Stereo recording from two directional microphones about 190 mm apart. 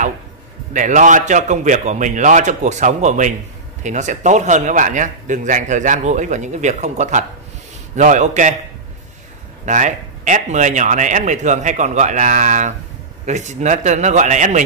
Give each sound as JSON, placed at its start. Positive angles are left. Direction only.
{"t": 0.7, "sound": "a man's voice", "side_deg": -40}
{"t": 9.7, "sound": "a man's voice", "side_deg": -40}